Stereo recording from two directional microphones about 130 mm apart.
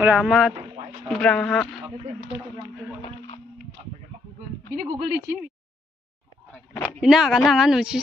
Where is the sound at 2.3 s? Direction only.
45° left (ahead or behind).